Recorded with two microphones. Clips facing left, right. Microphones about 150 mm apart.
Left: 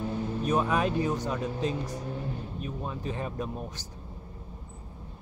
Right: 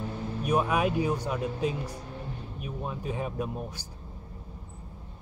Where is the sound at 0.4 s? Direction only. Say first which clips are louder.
Right 1 dB; 10° right (ahead or behind).